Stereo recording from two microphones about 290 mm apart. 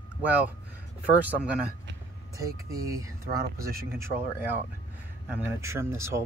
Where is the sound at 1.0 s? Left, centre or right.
Centre.